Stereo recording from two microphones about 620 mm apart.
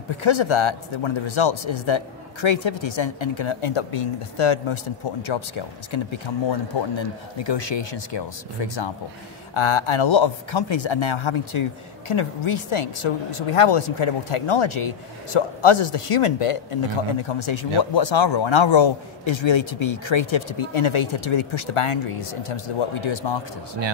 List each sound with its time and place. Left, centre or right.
0.2 s speech: left